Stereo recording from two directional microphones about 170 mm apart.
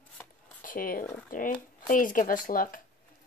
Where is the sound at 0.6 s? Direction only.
55° left (ahead or behind).